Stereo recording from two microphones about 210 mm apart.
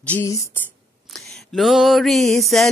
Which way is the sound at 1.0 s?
Centre (ahead or behind).